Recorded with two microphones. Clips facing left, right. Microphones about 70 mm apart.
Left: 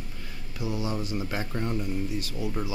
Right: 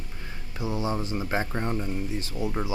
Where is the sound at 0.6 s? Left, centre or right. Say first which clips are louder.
Right 2 dB; right.